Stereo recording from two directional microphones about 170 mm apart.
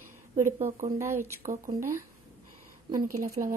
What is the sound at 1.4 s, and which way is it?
Speech, 50° right (ahead or behind).